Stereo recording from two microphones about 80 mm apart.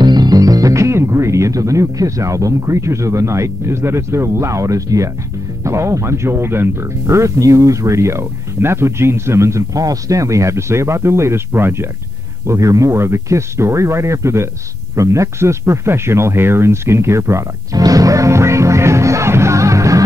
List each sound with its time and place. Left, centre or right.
0.0 s speech: right
12.4 s speech: right
17.7 s music: right